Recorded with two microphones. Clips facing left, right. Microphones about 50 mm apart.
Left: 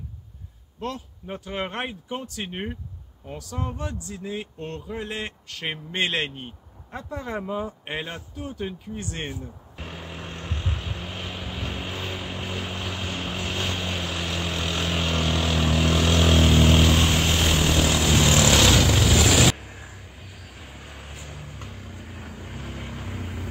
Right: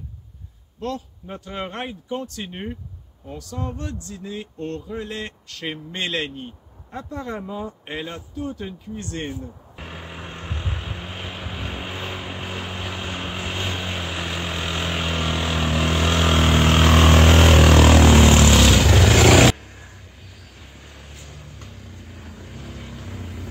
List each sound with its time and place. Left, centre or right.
0.7 s a man's voice: centre
6.9 s speech: centre
7.8 s a man's voice: left
8.4 s a man's voice: centre
9.8 s vehicle: centre; by 18.0 s right
18.0 s vehicle: right
18.5 s vehicle: centre
18.9 s vehicle: right
19.5 s vehicle: centre